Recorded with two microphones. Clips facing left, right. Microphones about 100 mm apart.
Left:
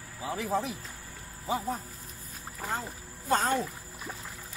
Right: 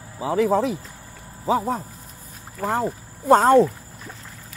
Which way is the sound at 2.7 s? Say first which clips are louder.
Right 11 dB; 60° right (ahead or behind).